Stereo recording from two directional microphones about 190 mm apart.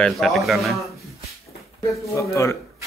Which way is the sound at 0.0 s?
Centre (ahead or behind).